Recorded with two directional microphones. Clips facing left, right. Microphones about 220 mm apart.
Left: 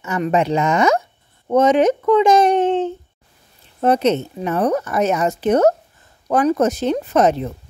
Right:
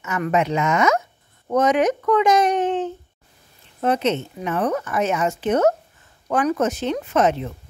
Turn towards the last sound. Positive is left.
turn(degrees=40)  # may be behind; listen again after turning